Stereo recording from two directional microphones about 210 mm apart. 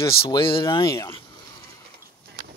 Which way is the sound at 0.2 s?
25° left (ahead or behind).